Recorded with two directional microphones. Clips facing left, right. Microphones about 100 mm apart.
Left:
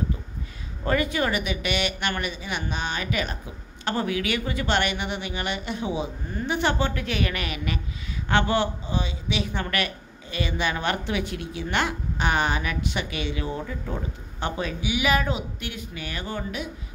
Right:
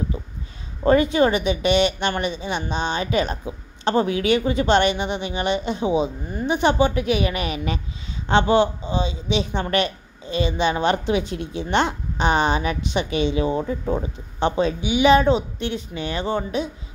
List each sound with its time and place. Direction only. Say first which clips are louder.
0.8 s speech: right 8 dB; 25° right (ahead or behind)